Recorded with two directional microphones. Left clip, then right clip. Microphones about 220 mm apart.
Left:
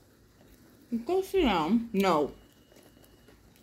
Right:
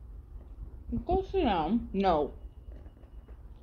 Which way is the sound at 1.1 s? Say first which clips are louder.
Left 2 dB; 40° left (ahead or behind).